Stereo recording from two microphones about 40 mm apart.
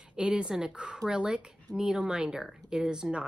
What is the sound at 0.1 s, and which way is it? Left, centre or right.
Speech, right.